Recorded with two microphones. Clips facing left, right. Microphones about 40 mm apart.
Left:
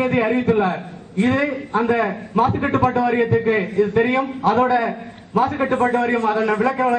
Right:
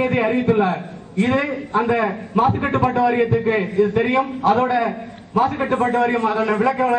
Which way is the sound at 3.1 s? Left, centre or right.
Centre.